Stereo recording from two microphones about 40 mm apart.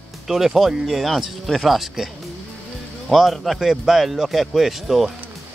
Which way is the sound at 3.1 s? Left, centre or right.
Centre.